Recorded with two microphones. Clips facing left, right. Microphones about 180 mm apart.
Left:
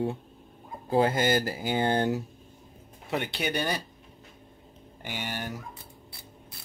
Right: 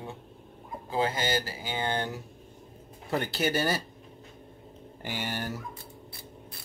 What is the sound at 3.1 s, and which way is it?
Speech, centre (ahead or behind).